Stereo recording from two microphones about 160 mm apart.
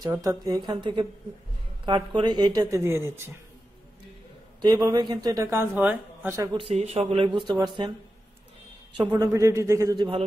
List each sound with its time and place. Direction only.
0.0 s speech: 20° right (ahead or behind)
4.6 s speech: 25° right (ahead or behind)
6.5 s a man's voice: 40° right (ahead or behind)
7.4 s speech: 25° right (ahead or behind)
9.1 s speech: 20° right (ahead or behind)